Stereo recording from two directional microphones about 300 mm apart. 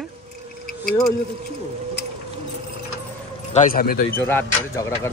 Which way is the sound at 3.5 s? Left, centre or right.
Left.